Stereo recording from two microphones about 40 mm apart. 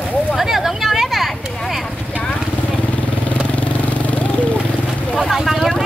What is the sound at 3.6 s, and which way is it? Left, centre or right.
Vehicle, left.